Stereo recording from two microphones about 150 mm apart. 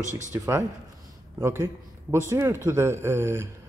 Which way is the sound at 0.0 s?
55° right (ahead or behind).